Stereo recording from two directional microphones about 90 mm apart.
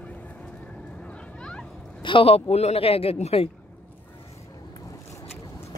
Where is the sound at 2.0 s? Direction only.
80° left.